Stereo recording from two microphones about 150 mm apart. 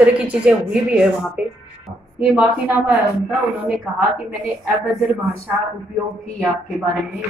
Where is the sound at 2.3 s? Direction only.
10° right (ahead or behind).